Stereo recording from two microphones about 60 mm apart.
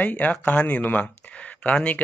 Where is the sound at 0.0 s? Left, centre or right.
Left.